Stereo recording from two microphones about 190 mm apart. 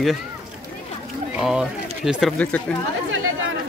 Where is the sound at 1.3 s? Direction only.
5° right (ahead or behind).